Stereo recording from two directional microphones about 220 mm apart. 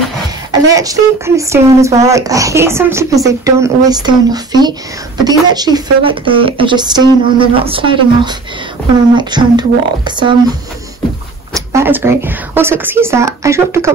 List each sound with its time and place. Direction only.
0.5 s a woman's voice: 15° right (ahead or behind)
11.5 s speech: 10° right (ahead or behind)